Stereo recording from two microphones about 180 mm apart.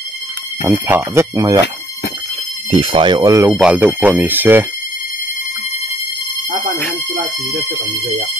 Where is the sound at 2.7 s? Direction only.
30° right (ahead or behind); by 4.6 s 10° right (ahead or behind).